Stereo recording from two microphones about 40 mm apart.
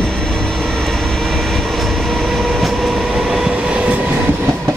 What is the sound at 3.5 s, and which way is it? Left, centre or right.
Train, right.